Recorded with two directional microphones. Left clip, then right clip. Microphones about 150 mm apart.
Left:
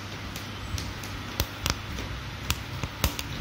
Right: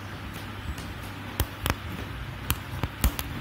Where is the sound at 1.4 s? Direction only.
25° right (ahead or behind).